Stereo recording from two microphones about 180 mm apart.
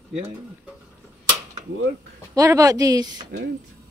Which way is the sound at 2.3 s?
20° right (ahead or behind).